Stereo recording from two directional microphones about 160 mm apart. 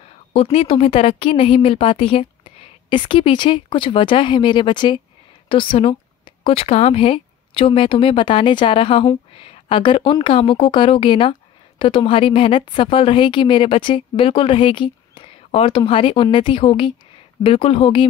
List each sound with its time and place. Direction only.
0.3 s speech: 40° left (ahead or behind)